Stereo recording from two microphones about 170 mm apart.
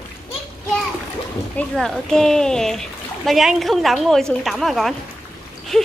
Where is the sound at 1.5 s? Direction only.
5° left (ahead or behind).